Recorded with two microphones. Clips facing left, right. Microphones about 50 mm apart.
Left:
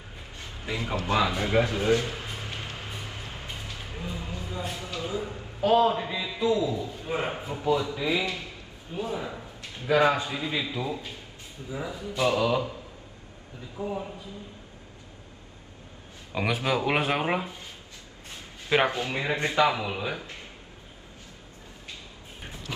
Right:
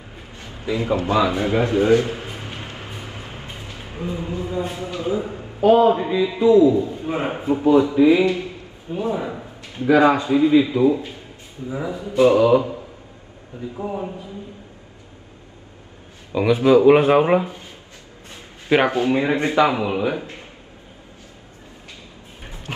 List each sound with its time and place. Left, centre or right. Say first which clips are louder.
0.4 s a man's voice: right 9 dB; right
16.3 s a man's voice: right 11 dB; right
16.9 s speech: right 12 dB; centre
18.7 s a man's voice: right 8 dB; right
22.7 s dog: right 5 dB; right